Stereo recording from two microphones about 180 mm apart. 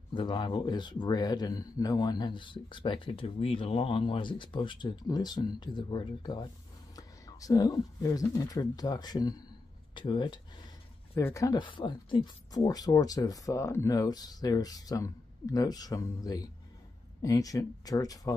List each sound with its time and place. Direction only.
0.1 s a man's voice: 25° left (ahead or behind)
11.1 s a man's voice: 15° left (ahead or behind)